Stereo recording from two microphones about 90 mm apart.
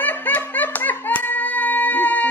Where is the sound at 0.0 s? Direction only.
20° left (ahead or behind).